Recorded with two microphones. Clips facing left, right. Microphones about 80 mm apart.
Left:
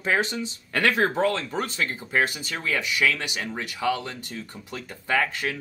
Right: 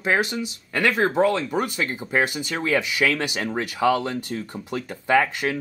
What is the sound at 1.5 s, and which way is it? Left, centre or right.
Speech, centre.